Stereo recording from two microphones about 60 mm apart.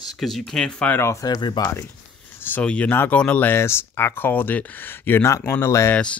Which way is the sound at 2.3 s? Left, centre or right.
Left.